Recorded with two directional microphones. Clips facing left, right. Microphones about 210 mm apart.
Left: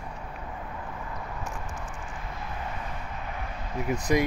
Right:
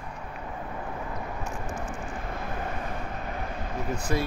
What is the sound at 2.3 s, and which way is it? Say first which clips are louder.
Vehicle: right 2 dB; 55° right (ahead or behind).